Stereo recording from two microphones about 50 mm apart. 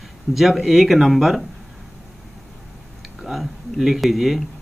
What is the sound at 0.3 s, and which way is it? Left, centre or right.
Speech, centre.